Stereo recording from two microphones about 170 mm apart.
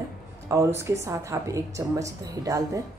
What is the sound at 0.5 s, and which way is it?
A man's voice, 20° right (ahead or behind).